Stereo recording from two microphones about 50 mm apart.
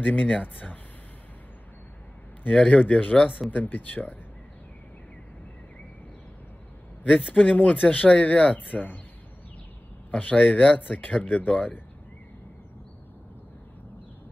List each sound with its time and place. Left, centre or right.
0.0 s speech: left
2.5 s speech: left
7.0 s speech: left
10.1 s speech: left